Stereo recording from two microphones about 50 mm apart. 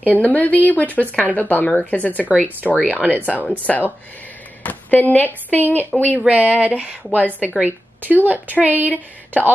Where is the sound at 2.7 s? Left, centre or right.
Right.